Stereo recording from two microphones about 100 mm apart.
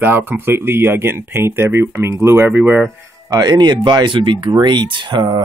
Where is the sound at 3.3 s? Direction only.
40° right (ahead or behind).